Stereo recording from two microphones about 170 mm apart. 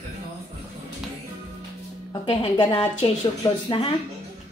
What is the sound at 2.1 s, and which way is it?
A woman's voice, 30° left (ahead or behind).